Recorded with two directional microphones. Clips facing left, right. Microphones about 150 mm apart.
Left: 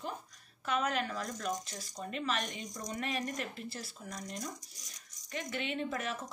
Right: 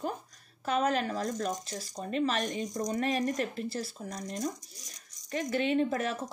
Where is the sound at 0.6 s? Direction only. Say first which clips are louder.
Right 5 dB; 35° right (ahead or behind).